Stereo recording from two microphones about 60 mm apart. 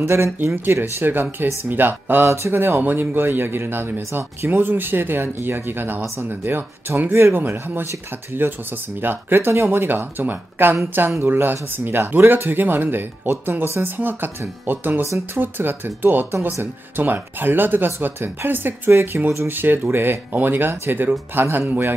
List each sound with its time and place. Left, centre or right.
0.0 s speech: right
2.2 s speech: right
2.5 s speech: right